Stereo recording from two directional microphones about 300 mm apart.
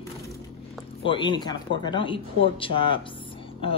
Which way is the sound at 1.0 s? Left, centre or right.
Centre.